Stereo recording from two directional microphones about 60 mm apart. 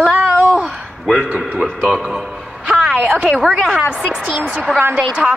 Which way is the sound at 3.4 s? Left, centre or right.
Centre.